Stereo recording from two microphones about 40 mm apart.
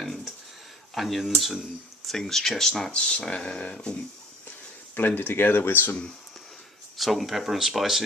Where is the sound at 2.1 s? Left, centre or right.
Centre.